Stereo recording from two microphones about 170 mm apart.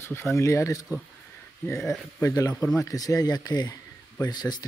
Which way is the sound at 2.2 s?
20° left (ahead or behind).